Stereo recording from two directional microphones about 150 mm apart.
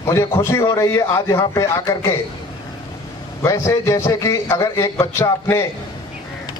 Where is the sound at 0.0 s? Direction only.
20° left (ahead or behind).